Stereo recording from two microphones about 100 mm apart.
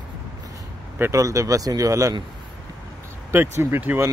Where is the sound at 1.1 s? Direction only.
35° right (ahead or behind).